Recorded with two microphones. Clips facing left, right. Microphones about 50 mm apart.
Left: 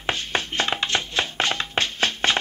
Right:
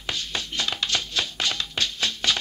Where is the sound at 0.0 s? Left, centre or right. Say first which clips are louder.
Left 5 dB; left.